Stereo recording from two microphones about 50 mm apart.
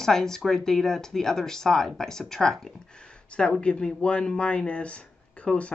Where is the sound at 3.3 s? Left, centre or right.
Left.